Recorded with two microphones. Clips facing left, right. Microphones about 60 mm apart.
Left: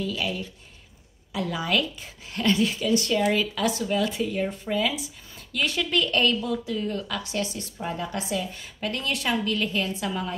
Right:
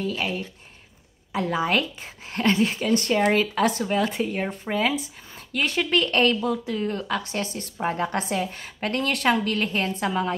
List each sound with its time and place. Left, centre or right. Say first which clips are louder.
0.0 s a woman's voice: right 2 dB; right